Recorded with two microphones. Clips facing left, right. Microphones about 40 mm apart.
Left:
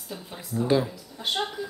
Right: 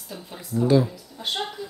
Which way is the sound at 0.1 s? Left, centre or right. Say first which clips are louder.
Right 3 dB; centre.